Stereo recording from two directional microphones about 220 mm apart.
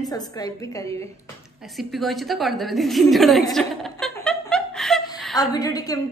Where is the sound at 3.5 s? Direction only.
Centre (ahead or behind).